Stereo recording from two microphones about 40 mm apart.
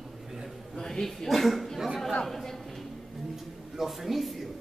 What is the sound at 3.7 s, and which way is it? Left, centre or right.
Speech, centre.